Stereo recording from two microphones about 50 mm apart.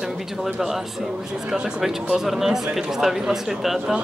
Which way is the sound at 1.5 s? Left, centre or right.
Centre.